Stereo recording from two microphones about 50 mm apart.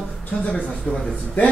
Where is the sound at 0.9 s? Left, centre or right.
Centre.